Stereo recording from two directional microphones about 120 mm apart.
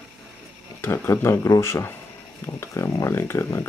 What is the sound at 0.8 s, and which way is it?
Speech, 20° left (ahead or behind).